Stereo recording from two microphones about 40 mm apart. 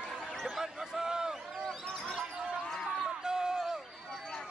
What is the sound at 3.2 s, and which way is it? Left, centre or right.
Run, centre.